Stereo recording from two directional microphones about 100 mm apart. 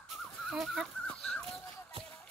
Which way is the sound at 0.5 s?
5° right (ahead or behind).